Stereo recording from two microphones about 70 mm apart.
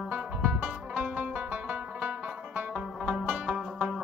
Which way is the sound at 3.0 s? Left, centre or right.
Centre.